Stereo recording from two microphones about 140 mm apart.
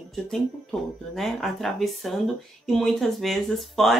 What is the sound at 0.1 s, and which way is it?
Speech, centre (ahead or behind).